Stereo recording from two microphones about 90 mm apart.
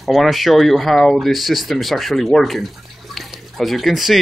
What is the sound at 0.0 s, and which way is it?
Speech, centre (ahead or behind).